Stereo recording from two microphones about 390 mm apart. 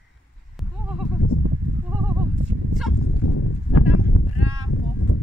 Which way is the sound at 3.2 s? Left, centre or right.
Left.